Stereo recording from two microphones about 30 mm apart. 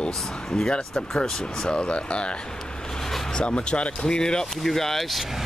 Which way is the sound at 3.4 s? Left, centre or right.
Left.